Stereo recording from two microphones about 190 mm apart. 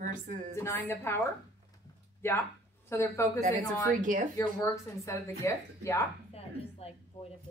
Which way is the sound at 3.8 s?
45° right (ahead or behind).